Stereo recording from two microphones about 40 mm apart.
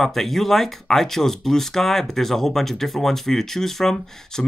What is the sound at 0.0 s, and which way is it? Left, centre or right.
Speech, centre.